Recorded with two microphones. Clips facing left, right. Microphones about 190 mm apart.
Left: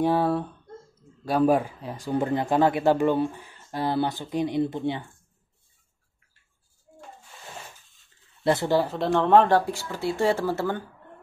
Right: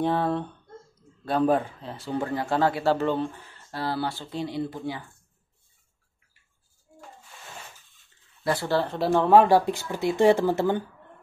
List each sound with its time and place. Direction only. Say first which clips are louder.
0.0 s speech: left 2 dB; 10° left (ahead or behind)
8.5 s speech: left 3 dB; 20° left (ahead or behind)
8.9 s speech: right 3 dB; 5° right (ahead or behind)